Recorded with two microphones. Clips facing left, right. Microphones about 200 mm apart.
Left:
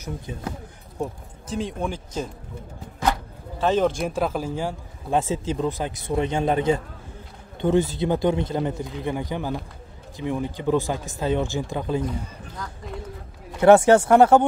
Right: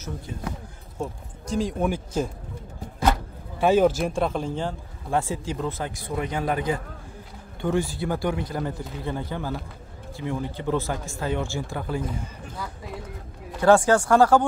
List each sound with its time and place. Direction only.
0.3 s speech: 20° left (ahead or behind)
0.9 s speech: 5° left (ahead or behind)
3.5 s a man's voice: 10° right (ahead or behind); by 4.7 s 5° left (ahead or behind)
5.1 s speech: 20° left (ahead or behind)
12.5 s speech: 5° right (ahead or behind)
13.6 s speech: 20° left (ahead or behind)